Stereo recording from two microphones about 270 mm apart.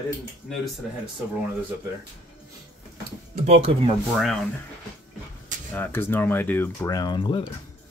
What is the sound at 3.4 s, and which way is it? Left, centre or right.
Speech, right.